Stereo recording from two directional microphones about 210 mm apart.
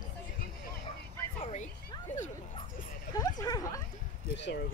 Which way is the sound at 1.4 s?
30° left (ahead or behind).